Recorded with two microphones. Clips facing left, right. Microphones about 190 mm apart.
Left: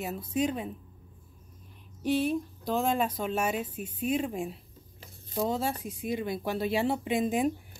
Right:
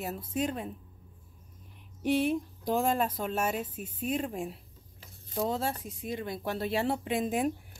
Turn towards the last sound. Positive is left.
turn(degrees=0)  # may be behind; listen again after turning